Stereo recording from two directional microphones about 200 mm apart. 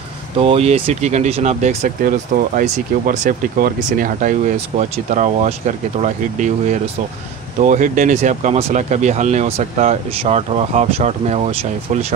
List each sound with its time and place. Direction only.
0.4 s speech: 30° right (ahead or behind)